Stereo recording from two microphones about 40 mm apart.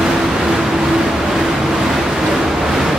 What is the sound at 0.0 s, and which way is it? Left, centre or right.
Vehicle, centre.